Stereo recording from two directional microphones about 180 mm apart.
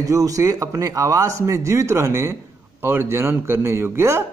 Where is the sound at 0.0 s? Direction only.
20° right (ahead or behind).